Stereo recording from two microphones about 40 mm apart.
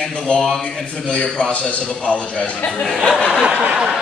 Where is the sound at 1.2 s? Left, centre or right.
Left.